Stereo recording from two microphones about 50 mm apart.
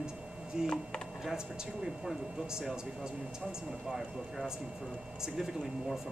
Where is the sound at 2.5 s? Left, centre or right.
Centre.